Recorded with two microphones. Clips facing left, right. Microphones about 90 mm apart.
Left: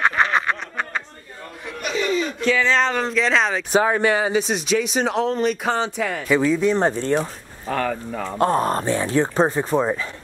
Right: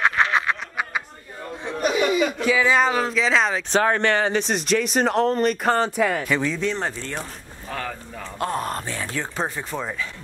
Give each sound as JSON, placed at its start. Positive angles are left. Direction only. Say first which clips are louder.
{"t": 0.0, "sound": "snicker", "louder": "left 1 dB", "side_deg": 0}
{"t": 1.9, "sound": "speech", "louder": "right 2 dB", "side_deg": -15}
{"t": 3.7, "sound": "speech", "louder": "left 2 dB", "side_deg": 10}
{"t": 7.1, "sound": "speech", "louder": "left 11 dB", "side_deg": 30}
{"t": 7.7, "sound": "speech", "louder": "left 8 dB", "side_deg": 75}
{"t": 8.4, "sound": "speech", "louder": "left 7 dB", "side_deg": 35}